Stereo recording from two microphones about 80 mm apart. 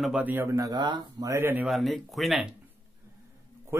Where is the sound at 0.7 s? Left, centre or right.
Right.